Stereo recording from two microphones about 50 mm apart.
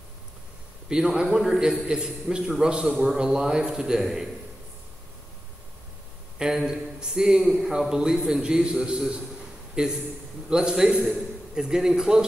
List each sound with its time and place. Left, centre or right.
0.8 s a man's voice: centre
6.3 s a man's voice: centre